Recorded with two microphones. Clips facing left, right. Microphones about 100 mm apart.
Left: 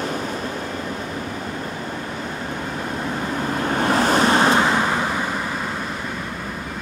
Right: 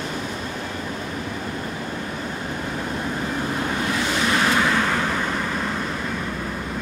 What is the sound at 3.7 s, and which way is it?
Vehicle, 45° left (ahead or behind).